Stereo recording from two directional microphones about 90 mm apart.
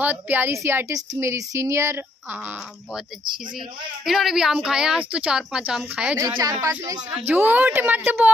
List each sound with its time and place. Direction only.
0.0 s a woman's voice: 20° right (ahead or behind)
4.0 s speech: 5° right (ahead or behind)
6.3 s speech: 40° right (ahead or behind)
7.2 s a woman's voice: 20° right (ahead or behind)